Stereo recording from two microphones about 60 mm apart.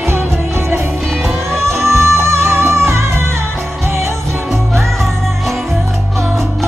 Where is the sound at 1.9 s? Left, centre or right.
Right.